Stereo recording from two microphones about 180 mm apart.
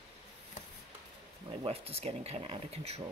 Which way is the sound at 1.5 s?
30° right (ahead or behind).